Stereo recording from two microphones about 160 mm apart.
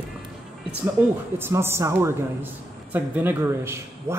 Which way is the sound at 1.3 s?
15° right (ahead or behind).